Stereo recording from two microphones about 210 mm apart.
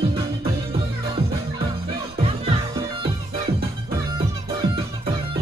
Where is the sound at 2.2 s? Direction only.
30° right (ahead or behind).